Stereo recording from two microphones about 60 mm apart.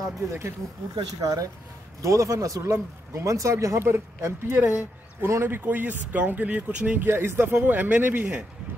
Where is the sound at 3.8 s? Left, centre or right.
Right.